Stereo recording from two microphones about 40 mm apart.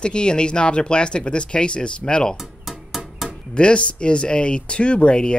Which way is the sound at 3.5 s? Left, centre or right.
Left.